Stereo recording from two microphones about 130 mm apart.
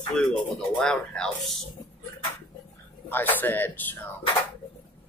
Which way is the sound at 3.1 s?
15° left (ahead or behind).